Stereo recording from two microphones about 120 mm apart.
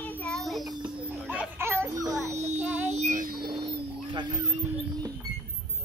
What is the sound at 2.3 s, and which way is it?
Child singing, 70° right (ahead or behind).